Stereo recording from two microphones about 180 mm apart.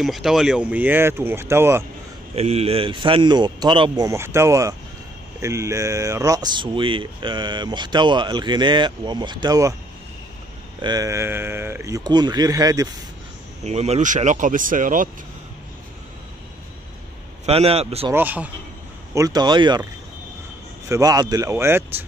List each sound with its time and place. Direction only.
0.0 s speech: centre (ahead or behind)
2.3 s speech: 35° right (ahead or behind); by 9.8 s 20° right (ahead or behind)
10.8 s speech: 20° right (ahead or behind)
13.7 s speech: 35° right (ahead or behind)
17.5 s speech: 35° right (ahead or behind)
18.1 s speech: 10° right (ahead or behind)
19.1 s speech: 20° right (ahead or behind)
20.9 s speech: 20° right (ahead or behind)